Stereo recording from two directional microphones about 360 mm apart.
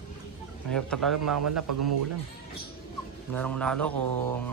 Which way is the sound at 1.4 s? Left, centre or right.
Right.